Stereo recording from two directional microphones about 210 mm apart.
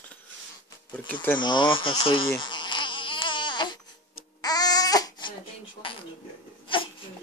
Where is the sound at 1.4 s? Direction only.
20° left (ahead or behind).